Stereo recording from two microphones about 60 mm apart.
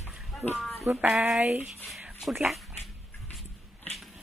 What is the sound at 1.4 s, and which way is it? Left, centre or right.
Speech, right.